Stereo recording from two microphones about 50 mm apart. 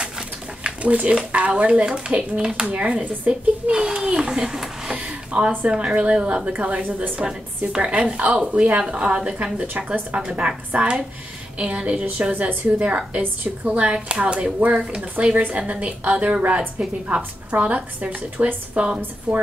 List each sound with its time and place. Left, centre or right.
0.7 s a child's voice: right
4.9 s a sound: right
5.7 s a child's voice: centre